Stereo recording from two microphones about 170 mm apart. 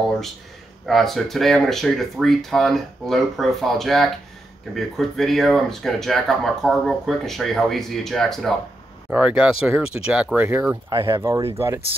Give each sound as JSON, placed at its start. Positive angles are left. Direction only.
{"t": 0.8, "sound": "speech", "side_deg": 0}